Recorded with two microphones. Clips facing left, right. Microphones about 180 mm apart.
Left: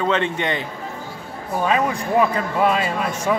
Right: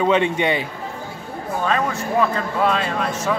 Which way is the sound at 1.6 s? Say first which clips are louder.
Left 2 dB; 10° left (ahead or behind).